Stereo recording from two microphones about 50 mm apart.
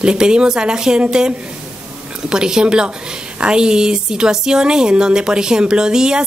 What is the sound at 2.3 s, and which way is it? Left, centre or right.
Speech, centre.